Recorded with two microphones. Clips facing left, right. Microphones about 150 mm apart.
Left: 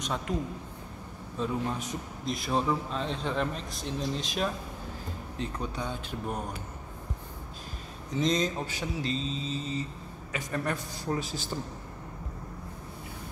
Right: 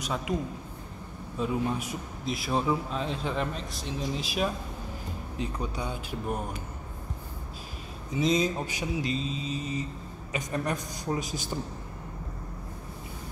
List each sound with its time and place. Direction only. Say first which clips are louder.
0.0 s speech: right 1 dB; 5° right (ahead or behind)
1.4 s a man's voice: right 2 dB; 10° right (ahead or behind)
5.4 s mantra: right 1 dB; 10° right (ahead or behind)
8.1 s mantra: right 2 dB; 10° right (ahead or behind)